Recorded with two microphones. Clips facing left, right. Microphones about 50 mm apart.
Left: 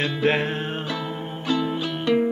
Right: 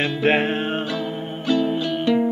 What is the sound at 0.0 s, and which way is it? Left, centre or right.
Music, right.